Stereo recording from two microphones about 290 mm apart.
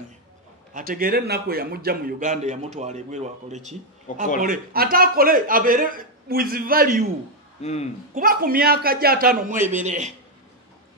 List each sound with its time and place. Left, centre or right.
0.7 s a man's voice: right
7.6 s a man's voice: left
8.1 s a man's voice: right